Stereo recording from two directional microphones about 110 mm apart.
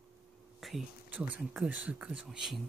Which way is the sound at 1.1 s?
10° right (ahead or behind).